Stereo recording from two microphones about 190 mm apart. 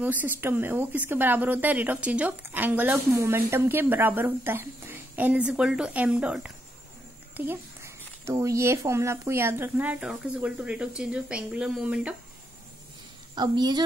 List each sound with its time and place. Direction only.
0.0 s speech: 10° right (ahead or behind)
13.3 s a woman's voice: 20° right (ahead or behind)